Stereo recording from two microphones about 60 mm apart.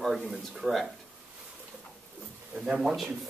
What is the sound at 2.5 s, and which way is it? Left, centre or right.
Speech, centre.